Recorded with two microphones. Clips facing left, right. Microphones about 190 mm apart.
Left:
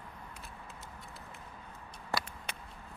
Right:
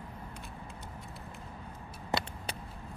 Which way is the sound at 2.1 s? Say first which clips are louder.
Right 3 dB; 20° right (ahead or behind).